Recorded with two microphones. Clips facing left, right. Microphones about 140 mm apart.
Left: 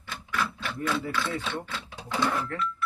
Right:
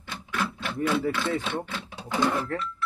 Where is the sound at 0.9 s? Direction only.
20° right (ahead or behind).